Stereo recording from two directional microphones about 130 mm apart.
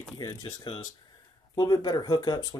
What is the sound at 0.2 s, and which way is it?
Speech, 30° left (ahead or behind).